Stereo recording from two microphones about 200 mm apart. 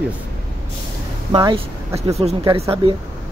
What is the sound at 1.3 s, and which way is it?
Speech, 20° right (ahead or behind).